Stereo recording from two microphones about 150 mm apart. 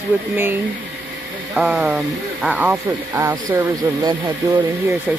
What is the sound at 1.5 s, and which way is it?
Speech, centre (ahead or behind).